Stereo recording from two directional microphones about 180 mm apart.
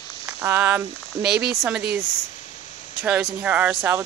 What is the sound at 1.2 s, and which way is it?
Speech, 65° right (ahead or behind).